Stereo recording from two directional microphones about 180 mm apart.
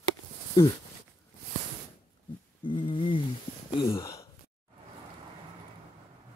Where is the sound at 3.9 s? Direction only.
20° left (ahead or behind).